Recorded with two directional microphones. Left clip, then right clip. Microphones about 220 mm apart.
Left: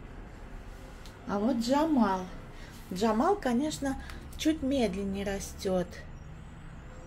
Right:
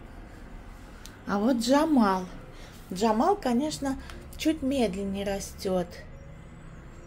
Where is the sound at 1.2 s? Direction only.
25° right (ahead or behind).